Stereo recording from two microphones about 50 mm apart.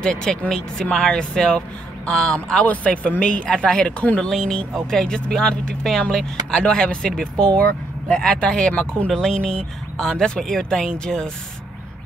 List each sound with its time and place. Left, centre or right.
0.0 s speech: centre
2.6 s speech: left